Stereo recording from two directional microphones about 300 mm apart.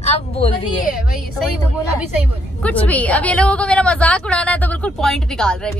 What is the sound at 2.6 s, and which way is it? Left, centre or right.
Speech, centre.